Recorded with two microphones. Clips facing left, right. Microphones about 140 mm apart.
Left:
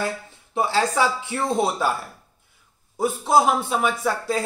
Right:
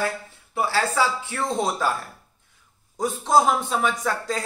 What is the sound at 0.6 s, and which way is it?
A man's voice, 20° left (ahead or behind).